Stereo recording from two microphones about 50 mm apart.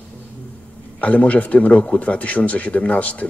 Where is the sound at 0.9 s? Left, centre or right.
Left.